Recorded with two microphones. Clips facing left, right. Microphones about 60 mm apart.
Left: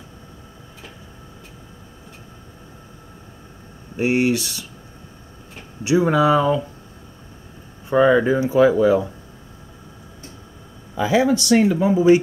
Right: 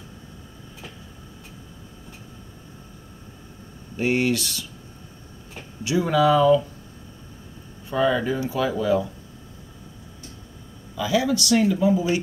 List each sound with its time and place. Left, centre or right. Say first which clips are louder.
3.9 s speech: left 3 dB; centre
5.9 s speech: left 3 dB; left
7.9 s speech: left 7 dB; left
11.0 s speech: left 5 dB; left